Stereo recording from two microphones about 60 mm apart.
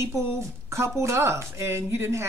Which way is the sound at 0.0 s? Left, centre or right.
Right.